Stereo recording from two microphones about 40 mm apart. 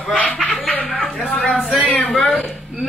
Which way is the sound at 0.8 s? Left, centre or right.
Left.